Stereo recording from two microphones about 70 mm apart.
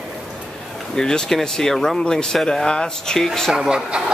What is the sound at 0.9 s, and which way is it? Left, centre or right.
Speech, centre.